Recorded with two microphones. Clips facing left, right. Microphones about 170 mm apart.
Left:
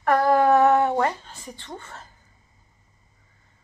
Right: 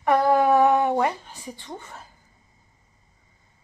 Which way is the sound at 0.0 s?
15° right (ahead or behind).